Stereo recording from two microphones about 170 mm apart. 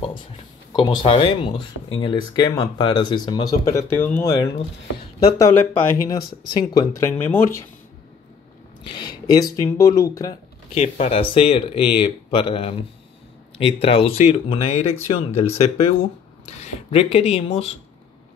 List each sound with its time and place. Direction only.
0.7 s speech: 30° left (ahead or behind); by 4.3 s 10° left (ahead or behind)
4.3 s speech: 25° left (ahead or behind)
5.4 s speech: 15° left (ahead or behind)
8.8 s speech: 25° left (ahead or behind)
10.7 s speech: 35° left (ahead or behind)